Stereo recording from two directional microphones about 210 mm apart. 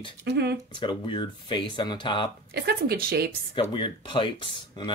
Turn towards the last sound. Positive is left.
turn(degrees=20)  # may be behind; listen again after turning